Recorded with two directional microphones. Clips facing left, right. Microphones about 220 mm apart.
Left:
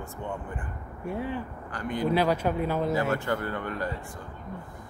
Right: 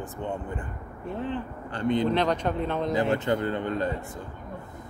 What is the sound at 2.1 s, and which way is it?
Speech, 5° left (ahead or behind).